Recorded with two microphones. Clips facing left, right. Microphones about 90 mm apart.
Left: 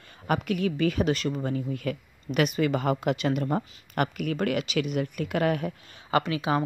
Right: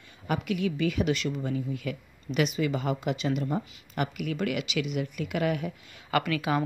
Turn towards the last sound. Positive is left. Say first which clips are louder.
# left 2 dB
turn(degrees=25)  # may be behind; listen again after turning